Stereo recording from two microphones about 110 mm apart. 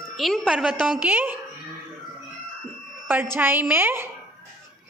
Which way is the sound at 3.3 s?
15° right (ahead or behind).